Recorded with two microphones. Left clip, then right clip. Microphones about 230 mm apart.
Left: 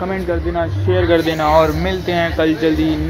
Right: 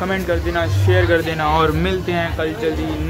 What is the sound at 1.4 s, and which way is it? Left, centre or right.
Speech, centre.